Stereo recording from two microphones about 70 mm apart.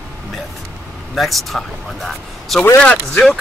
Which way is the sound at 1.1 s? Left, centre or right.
Centre.